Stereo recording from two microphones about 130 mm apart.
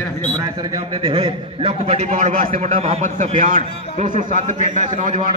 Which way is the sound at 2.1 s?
75° right (ahead or behind).